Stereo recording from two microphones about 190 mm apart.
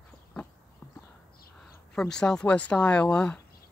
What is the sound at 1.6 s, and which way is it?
Speech, 5° left (ahead or behind).